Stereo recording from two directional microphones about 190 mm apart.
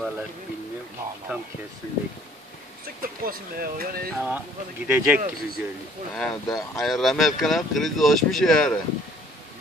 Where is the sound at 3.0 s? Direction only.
50° right (ahead or behind).